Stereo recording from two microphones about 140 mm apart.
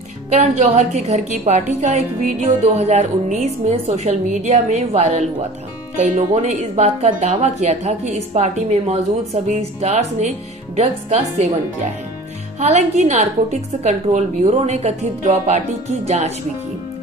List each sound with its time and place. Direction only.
0.4 s a woman's voice: 55° right (ahead or behind)